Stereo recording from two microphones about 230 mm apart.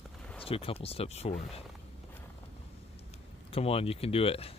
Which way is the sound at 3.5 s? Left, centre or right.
Left.